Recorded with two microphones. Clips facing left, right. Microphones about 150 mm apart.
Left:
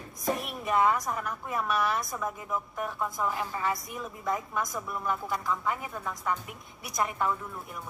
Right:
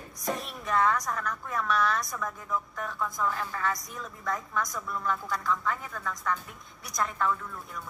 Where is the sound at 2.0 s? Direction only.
25° left (ahead or behind).